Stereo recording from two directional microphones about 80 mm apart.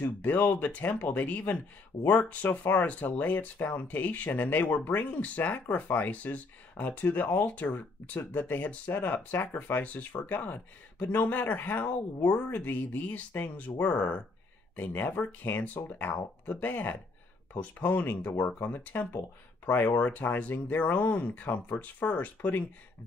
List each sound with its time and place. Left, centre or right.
0.0 s speech: left